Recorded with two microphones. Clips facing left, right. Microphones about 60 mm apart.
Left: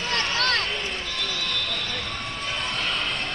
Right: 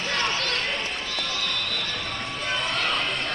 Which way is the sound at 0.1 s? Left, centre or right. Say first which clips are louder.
Left 3 dB; left.